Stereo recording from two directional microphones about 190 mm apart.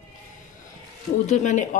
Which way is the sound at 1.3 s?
40° left (ahead or behind).